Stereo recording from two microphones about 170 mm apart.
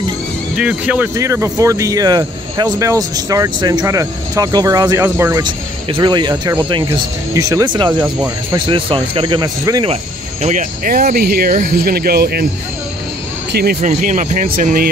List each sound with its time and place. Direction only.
0.6 s speech: 5° right (ahead or behind)
5.4 s speech: 25° right (ahead or behind)
10.4 s speech: 50° right (ahead or behind); by 12.4 s 65° right (ahead or behind)
13.5 s speech: 70° right (ahead or behind)
13.7 s speech: 45° right (ahead or behind)